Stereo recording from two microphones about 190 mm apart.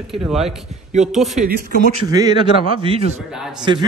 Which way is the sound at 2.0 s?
20° right (ahead or behind).